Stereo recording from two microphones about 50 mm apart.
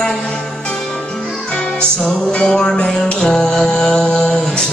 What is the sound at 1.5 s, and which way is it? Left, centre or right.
Music, centre.